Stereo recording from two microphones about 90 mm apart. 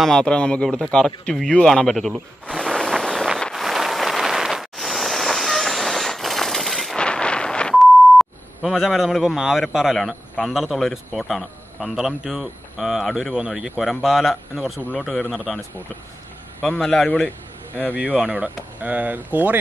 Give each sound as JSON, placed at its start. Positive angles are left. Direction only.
{"t": 0.0, "sound": "speech", "side_deg": 5}
{"t": 2.5, "sound": "a sound", "side_deg": 0}
{"t": 3.3, "sound": "vehicle", "side_deg": 5}
{"t": 7.0, "sound": "wind noise", "side_deg": 10}
{"t": 7.7, "sound": "speech", "side_deg": 0}
{"t": 16.7, "sound": "speech", "side_deg": 5}
{"t": 18.1, "sound": "speech", "side_deg": -15}